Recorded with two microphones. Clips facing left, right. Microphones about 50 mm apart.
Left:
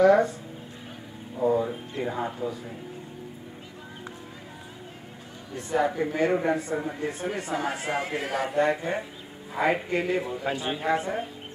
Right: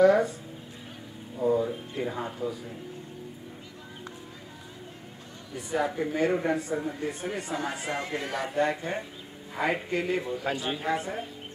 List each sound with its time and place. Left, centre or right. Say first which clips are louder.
0.0 s music: left 2 dB; centre
1.4 s music: left 1 dB; centre
2.0 s a man's voice: left 3 dB; centre
5.7 s a man's voice: left 3 dB; centre
7.4 s speech: left 3 dB; left
8.2 s speech: left 3 dB; left
8.5 s a man's voice: left 3 dB; centre